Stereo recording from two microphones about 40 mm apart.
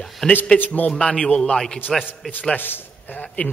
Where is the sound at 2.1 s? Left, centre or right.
Left.